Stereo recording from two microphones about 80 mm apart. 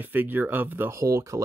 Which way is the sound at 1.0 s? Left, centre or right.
Right.